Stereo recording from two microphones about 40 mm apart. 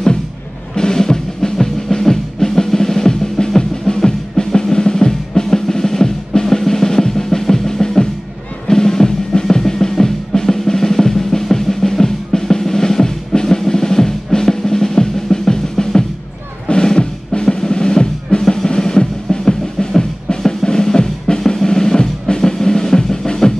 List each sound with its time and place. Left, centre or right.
0.7 s music: centre
4.7 s drum: centre
8.6 s music: centre
16.6 s drum: left
18.7 s music: centre
21.6 s drum: centre